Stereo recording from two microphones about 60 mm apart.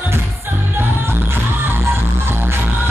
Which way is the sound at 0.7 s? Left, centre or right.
Right.